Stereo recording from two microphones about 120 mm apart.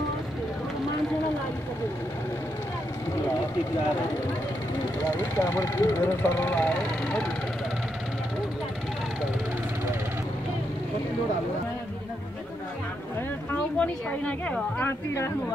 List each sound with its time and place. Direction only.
5.1 s speech: 25° left (ahead or behind)
13.7 s a woman's voice: 10° left (ahead or behind)